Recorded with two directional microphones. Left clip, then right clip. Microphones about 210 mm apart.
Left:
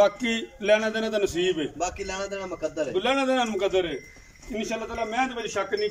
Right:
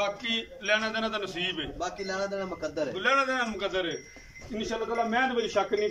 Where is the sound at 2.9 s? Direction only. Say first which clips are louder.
Left 2 dB; 20° left (ahead or behind).